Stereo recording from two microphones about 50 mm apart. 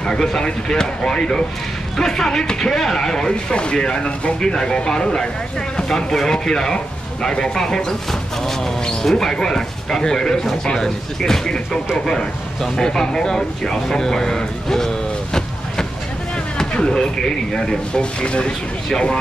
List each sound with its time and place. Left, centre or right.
0.0 s speech: centre
16.7 s speech: centre